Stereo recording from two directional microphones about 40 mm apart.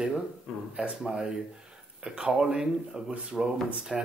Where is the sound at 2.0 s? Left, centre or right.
Centre.